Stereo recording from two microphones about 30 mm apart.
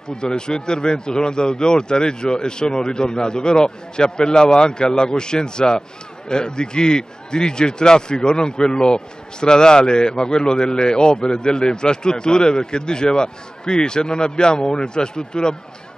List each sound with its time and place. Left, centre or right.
0.4 s a man's voice: left